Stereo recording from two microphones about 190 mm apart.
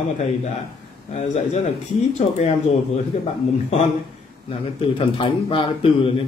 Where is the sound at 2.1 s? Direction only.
35° left (ahead or behind).